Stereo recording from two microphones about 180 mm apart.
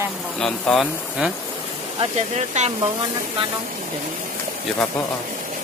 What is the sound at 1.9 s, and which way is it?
Speech, 40° right (ahead or behind).